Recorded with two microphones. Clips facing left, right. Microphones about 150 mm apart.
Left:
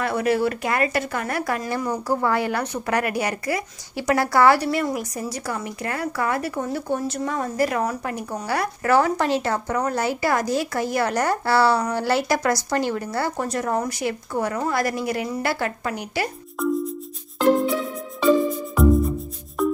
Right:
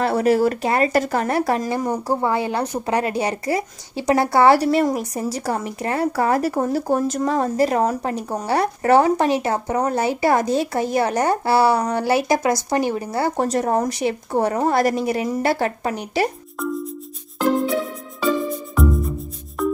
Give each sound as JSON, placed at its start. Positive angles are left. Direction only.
{"t": 0.0, "sound": "a woman's voice", "side_deg": -35}
{"t": 4.6, "sound": "speech", "side_deg": -35}
{"t": 7.2, "sound": "a woman's voice", "side_deg": -30}
{"t": 13.4, "sound": "a woman's voice", "side_deg": -30}
{"t": 16.6, "sound": "music", "side_deg": 0}
{"t": 18.8, "sound": "music", "side_deg": 0}